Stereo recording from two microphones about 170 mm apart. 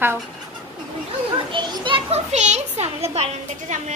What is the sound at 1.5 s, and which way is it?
A child's voice, 30° right (ahead or behind).